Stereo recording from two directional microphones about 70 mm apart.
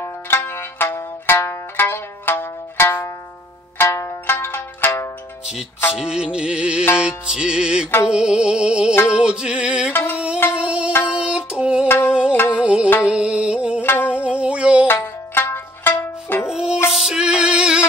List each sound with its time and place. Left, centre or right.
0.0 s music: left
3.7 s zither: left
5.9 s music: centre
11.1 s a sound: centre
12.1 s music: centre
13.8 s music: left
14.1 s music: centre
15.3 s music: left
16.4 s music: centre